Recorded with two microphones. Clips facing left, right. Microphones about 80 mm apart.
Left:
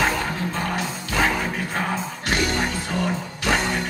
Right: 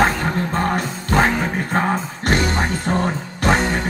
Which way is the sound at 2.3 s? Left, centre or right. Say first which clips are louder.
Right 4 dB; right.